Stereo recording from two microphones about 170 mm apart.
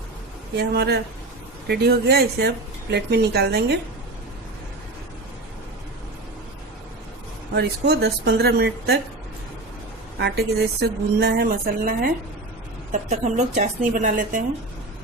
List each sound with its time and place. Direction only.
0.6 s speech: 70° right (ahead or behind)
7.5 s speech: 70° right (ahead or behind)
10.1 s speech: 75° right (ahead or behind)
12.9 s a woman's voice: 45° right (ahead or behind)